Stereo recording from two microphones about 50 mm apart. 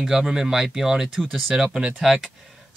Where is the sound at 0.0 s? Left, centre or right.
Centre.